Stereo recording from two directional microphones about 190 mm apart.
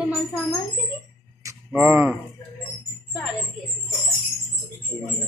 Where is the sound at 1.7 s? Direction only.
10° right (ahead or behind).